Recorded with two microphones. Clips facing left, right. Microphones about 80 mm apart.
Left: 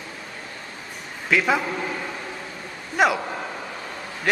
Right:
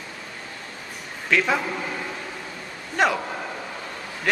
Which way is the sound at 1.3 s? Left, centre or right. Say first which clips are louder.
Left 1 dB; centre.